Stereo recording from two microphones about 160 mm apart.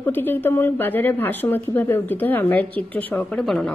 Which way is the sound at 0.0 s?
10° left (ahead or behind).